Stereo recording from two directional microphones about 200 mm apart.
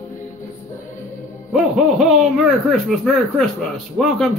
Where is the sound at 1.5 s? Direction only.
Centre (ahead or behind).